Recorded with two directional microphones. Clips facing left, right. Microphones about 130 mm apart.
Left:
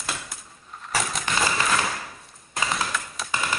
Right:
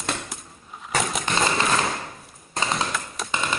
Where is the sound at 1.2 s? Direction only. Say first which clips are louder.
Right 2 dB; 25° right (ahead or behind).